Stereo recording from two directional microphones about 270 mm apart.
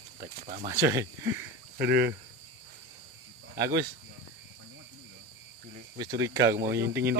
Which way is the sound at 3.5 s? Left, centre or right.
Centre.